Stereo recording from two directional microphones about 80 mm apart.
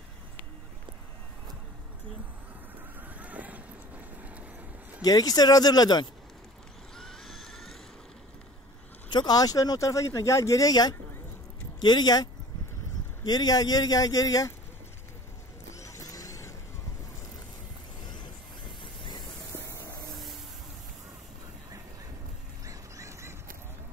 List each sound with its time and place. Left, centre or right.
3.0 s vehicle: centre
5.0 s speech: left
7.0 s vehicle: centre
9.1 s speech: left
15.7 s vehicle: left
18.0 s vehicle: left
22.7 s duck: right